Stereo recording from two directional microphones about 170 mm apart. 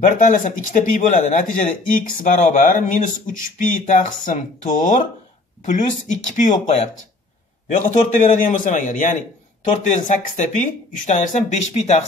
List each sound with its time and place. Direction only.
0.0 s speech: 45° left (ahead or behind)
6.3 s speech: 45° left (ahead or behind)